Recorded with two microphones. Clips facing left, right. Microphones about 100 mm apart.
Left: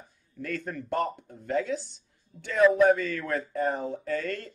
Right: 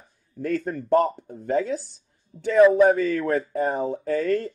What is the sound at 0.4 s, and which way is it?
Speech, 35° right (ahead or behind).